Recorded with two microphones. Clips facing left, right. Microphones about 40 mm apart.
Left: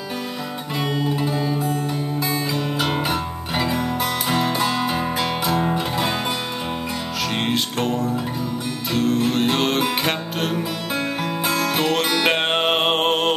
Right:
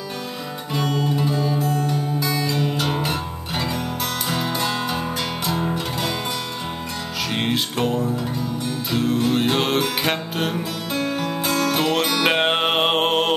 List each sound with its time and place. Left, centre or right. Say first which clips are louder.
0.8 s music: even; left
1.1 s music: right 1 dB; centre
1.6 s music: right 1 dB; left
2.5 s music: even; centre
7.3 s music: right 1 dB; centre